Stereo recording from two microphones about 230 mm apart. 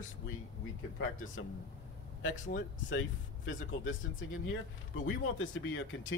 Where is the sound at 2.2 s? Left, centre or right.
Left.